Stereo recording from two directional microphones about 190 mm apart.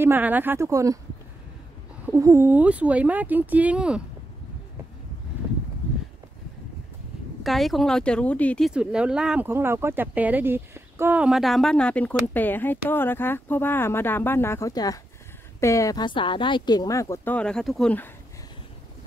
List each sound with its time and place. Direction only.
0.0 s speech: 10° right (ahead or behind)
2.1 s speech: 15° right (ahead or behind)
7.4 s speech: centre (ahead or behind)